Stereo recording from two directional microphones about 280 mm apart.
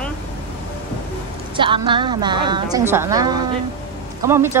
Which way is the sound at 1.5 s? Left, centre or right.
Centre.